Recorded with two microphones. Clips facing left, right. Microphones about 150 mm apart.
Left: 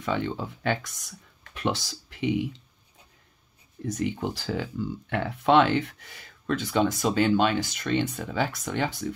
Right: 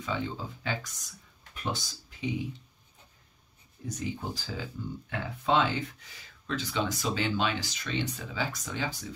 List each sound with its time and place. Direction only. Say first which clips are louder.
0.0 s speech: left 5 dB; 65° left (ahead or behind)
3.8 s speech: left 7 dB; 65° left (ahead or behind)